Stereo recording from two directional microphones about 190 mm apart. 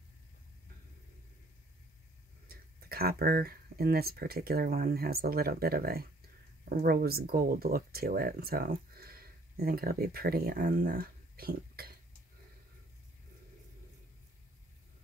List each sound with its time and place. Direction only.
2.4 s speech: 55° right (ahead or behind)